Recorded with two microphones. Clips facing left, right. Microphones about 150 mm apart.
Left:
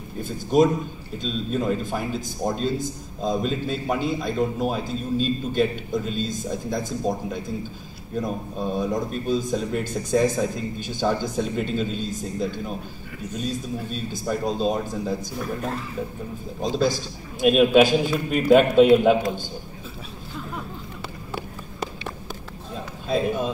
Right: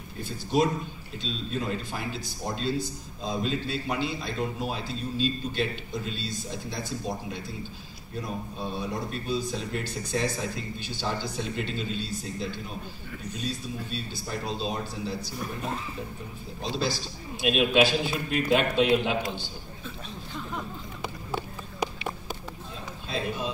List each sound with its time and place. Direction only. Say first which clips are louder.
0.2 s speech: left 6 dB; 45° left (ahead or behind)
16.6 s speech: left 7 dB; 45° left (ahead or behind)
23.0 s speech: left 8 dB; 50° left (ahead or behind)